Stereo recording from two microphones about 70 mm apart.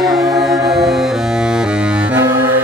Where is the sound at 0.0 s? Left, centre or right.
Centre.